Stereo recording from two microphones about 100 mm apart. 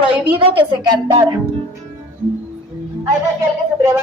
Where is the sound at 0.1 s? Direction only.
60° right (ahead or behind).